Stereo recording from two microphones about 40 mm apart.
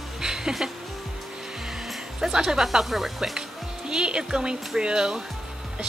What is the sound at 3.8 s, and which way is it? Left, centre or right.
Speech, right.